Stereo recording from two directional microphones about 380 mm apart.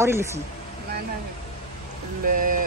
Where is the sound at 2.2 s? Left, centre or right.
Right.